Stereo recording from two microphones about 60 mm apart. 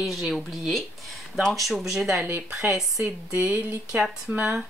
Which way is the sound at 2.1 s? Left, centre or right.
Right.